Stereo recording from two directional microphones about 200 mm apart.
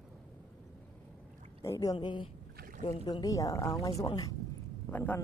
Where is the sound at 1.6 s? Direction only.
15° left (ahead or behind).